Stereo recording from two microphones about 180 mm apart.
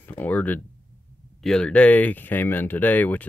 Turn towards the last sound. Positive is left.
turn(degrees=10)  # may be behind; listen again after turning